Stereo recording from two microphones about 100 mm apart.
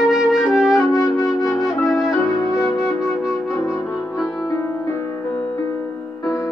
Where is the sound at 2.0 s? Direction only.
30° left (ahead or behind).